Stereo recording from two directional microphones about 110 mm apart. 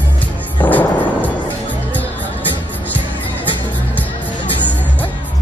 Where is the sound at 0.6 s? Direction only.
15° left (ahead or behind).